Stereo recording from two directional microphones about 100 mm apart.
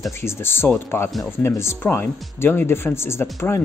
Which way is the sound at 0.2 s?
25° left (ahead or behind).